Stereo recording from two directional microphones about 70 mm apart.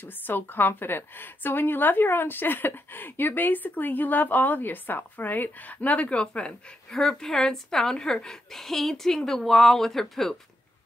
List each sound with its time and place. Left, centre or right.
0.0 s a woman's voice: left; by 10.3 s centre